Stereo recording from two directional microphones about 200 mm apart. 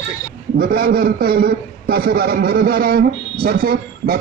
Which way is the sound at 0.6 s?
50° right (ahead or behind).